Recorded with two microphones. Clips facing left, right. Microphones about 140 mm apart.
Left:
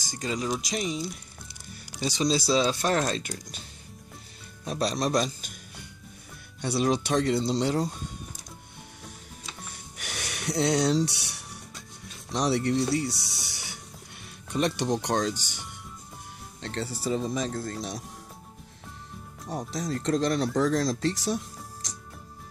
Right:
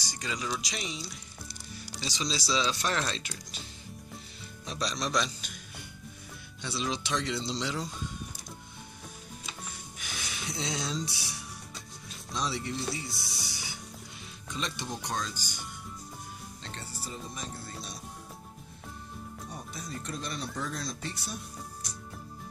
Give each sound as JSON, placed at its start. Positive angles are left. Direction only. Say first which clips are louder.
{"t": 0.1, "sound": "speech", "louder": "left 6 dB", "side_deg": 40}
{"t": 4.6, "sound": "a man's voice", "louder": "left 7 dB", "side_deg": 55}
{"t": 6.6, "sound": "speech", "louder": "left 9 dB", "side_deg": 55}
{"t": 9.9, "sound": "music", "louder": "left 5 dB", "side_deg": 70}
{"t": 12.3, "sound": "speech", "louder": "left 9 dB", "side_deg": 70}
{"t": 14.5, "sound": "speech", "louder": "left 11 dB", "side_deg": 65}
{"t": 16.6, "sound": "speech", "louder": "left 13 dB", "side_deg": 85}
{"t": 19.5, "sound": "speech", "louder": "left 12 dB", "side_deg": 90}